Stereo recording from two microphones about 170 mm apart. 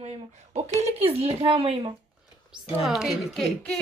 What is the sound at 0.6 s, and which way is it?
Speech, 40° right (ahead or behind).